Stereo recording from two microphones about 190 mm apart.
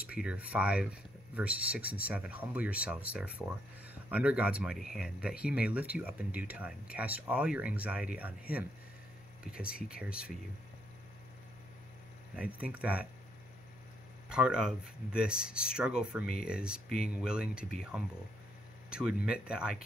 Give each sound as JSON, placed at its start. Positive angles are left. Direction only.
{"t": 0.1, "sound": "speech", "side_deg": -5}
{"t": 9.5, "sound": "speech", "side_deg": 50}
{"t": 9.9, "sound": "speech", "side_deg": -5}
{"t": 12.4, "sound": "speech", "side_deg": -5}
{"t": 14.3, "sound": "speech", "side_deg": -5}